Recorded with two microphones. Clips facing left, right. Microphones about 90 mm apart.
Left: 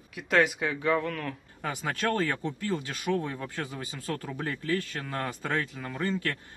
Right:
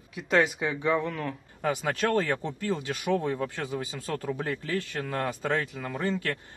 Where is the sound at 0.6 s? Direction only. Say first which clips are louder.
Right 1 dB; 10° right (ahead or behind).